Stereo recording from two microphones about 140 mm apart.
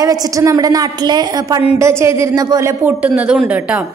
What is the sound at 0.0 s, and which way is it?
A man's voice, 25° right (ahead or behind).